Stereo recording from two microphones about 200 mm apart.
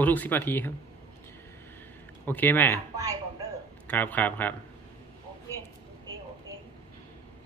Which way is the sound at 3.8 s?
10° left (ahead or behind).